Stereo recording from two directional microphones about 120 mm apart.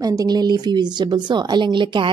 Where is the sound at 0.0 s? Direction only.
30° right (ahead or behind).